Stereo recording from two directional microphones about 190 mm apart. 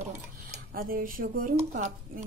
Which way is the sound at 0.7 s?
50° right (ahead or behind).